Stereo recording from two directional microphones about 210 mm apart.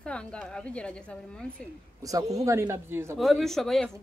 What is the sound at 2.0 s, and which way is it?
A man's voice, 15° right (ahead or behind).